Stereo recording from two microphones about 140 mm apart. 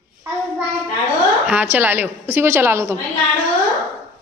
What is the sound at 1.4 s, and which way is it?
A woman's voice, 10° right (ahead or behind).